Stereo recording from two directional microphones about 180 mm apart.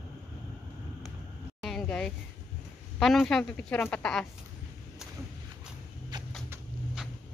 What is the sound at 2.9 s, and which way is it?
A woman's voice, centre (ahead or behind).